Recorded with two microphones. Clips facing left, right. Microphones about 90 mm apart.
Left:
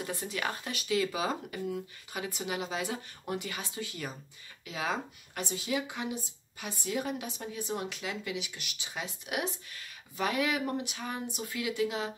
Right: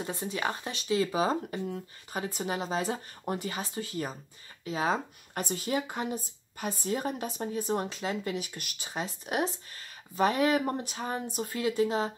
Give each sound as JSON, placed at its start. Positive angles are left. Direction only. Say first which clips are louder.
{"t": 0.0, "sound": "a woman's voice", "louder": "right 3 dB", "side_deg": -25}
{"t": 5.4, "sound": "a woman's voice", "louder": "right 2 dB", "side_deg": -50}